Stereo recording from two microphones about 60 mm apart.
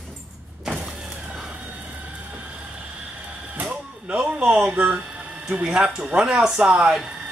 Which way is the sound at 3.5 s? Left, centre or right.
Right.